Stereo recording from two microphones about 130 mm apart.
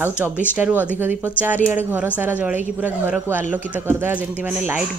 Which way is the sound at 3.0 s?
15° right (ahead or behind).